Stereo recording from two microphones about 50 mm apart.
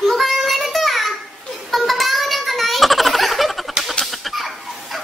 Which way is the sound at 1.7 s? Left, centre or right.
Centre.